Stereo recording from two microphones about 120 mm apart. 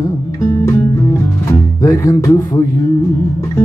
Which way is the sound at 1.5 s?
25° left (ahead or behind).